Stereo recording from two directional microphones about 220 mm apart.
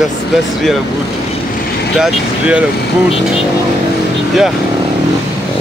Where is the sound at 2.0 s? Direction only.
5° right (ahead or behind).